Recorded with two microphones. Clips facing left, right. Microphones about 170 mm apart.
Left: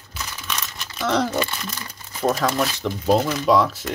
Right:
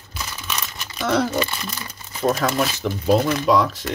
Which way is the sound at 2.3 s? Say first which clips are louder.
Even; 5° right (ahead or behind).